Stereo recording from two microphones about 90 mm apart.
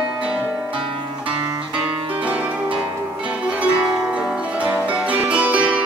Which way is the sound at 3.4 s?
10° right (ahead or behind).